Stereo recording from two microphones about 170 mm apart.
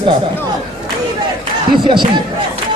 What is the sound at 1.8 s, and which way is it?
Speech, 25° right (ahead or behind).